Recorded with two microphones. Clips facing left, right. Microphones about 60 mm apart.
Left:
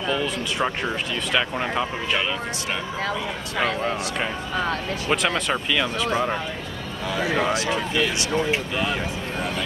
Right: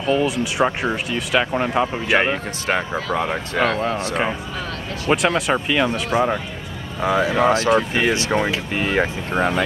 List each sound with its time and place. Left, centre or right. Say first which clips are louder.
0.0 s speech: right 6 dB; right
0.4 s speech: right 5 dB; centre
2.1 s speech: right 9 dB; right
3.8 s speech: right 3 dB; right
5.3 s speech: right 4 dB; centre
7.0 s speech: right 6 dB; right
8.4 s speech: right 2 dB; right
9.3 s speech: right 9 dB; right